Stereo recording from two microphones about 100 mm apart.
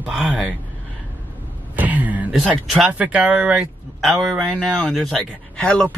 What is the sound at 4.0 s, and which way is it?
Speech, centre (ahead or behind).